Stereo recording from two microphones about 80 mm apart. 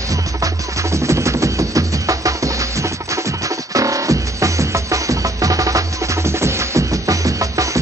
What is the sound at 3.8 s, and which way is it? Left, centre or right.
Music, right.